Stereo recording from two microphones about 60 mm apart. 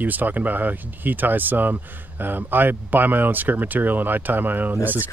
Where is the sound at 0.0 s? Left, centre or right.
Right.